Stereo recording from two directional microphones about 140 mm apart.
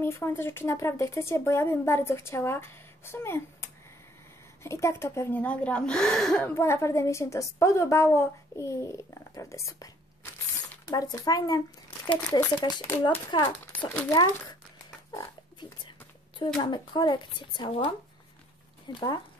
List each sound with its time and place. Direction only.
0.0 s speech: 20° left (ahead or behind)
10.9 s speech: 25° left (ahead or behind)
13.7 s speech: 10° left (ahead or behind)
16.5 s speech: 30° left (ahead or behind)